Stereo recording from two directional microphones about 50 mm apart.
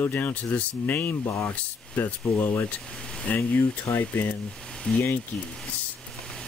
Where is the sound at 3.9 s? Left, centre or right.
Left.